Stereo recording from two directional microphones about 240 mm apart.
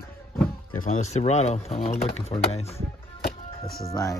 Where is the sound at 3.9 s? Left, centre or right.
Centre.